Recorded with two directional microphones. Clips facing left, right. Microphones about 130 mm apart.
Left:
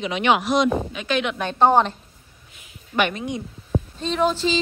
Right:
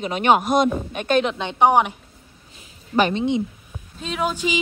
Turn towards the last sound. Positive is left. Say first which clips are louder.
# left 3 dB
turn(degrees=-10)  # may be behind; listen again after turning